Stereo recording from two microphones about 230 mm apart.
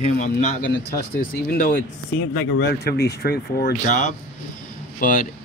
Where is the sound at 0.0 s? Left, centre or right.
Left.